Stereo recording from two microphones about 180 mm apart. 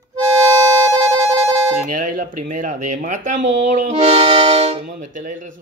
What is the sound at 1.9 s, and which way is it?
Speech, 50° right (ahead or behind).